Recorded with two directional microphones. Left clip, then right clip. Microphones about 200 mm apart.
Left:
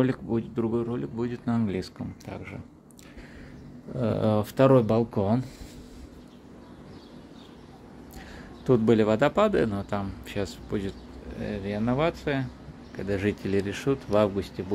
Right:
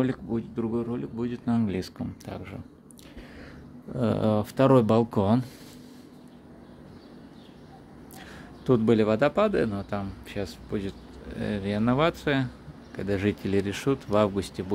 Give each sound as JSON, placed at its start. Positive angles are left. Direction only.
{"t": 0.0, "sound": "speech", "side_deg": 5}
{"t": 3.9, "sound": "speech", "side_deg": -10}
{"t": 4.7, "sound": "speech", "side_deg": -15}
{"t": 8.6, "sound": "speech", "side_deg": -5}
{"t": 11.3, "sound": "speech", "side_deg": -25}